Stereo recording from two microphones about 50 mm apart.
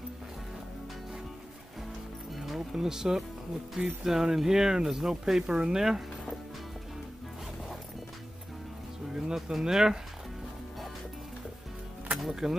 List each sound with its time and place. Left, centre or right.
2.3 s music: centre
4.0 s speech: centre
9.1 s speech: centre
12.2 s speech: centre